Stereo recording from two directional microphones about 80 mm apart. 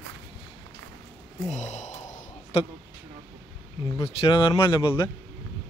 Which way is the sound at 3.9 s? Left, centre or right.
Left.